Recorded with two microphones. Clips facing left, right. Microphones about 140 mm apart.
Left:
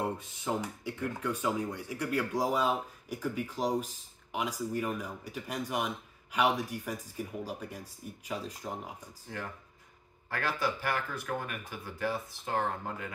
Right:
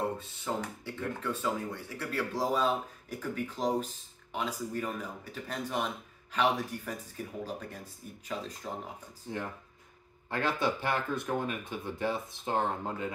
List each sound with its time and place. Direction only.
0.0 s speech: 10° left (ahead or behind)
9.3 s speech: 20° right (ahead or behind)